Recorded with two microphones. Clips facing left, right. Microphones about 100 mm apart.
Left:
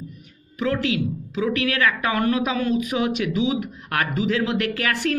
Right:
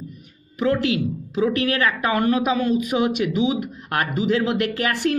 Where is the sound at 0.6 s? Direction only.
30° right (ahead or behind).